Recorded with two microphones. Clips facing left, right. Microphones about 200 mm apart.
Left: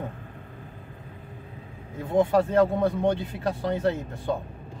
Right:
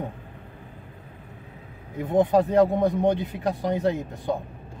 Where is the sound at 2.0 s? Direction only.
20° right (ahead or behind).